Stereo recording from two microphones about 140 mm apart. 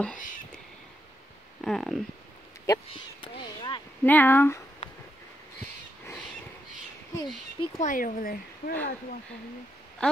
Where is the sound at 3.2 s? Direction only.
35° left (ahead or behind).